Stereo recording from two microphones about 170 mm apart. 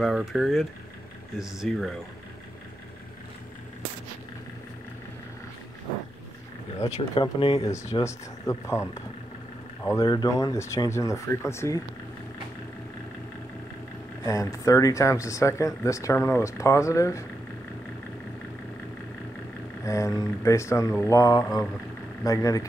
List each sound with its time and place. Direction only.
0.0 s speech: centre (ahead or behind)
6.8 s speech: 35° left (ahead or behind)
8.0 s speech: 15° left (ahead or behind)
9.8 s speech: 20° left (ahead or behind)
14.2 s speech: 20° left (ahead or behind)
19.8 s speech: 20° left (ahead or behind)